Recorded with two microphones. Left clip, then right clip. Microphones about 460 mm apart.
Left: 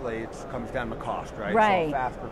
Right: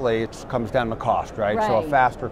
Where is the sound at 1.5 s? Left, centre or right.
Left.